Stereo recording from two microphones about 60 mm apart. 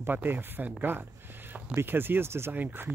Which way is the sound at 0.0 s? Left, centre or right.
Right.